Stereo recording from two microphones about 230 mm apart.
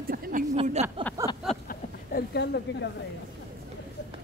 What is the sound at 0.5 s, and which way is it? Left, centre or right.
Speech, right.